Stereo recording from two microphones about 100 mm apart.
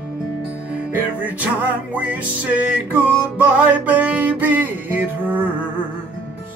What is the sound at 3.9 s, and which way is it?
Music, 15° right (ahead or behind).